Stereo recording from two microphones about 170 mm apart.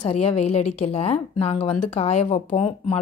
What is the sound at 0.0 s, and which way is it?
Speech, 35° left (ahead or behind).